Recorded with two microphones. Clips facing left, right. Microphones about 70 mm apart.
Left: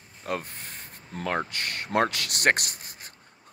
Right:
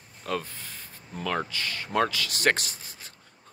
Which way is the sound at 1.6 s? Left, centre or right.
Left.